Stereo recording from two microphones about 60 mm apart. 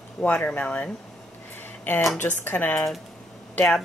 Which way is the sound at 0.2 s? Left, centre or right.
Left.